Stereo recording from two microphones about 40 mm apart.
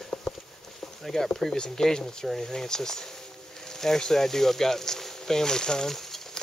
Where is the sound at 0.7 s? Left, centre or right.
Centre.